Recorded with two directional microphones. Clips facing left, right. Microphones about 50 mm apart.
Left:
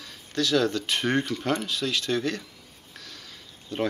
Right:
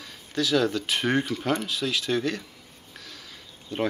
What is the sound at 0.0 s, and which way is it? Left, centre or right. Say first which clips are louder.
Speech: even; centre.